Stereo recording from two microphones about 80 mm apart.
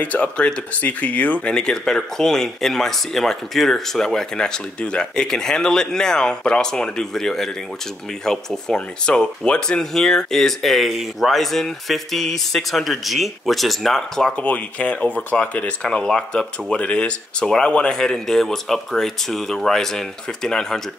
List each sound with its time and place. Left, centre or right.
0.0 s speech: centre
14.3 s speech: centre